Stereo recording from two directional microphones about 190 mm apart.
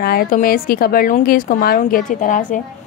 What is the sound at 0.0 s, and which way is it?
Speech, 50° left (ahead or behind).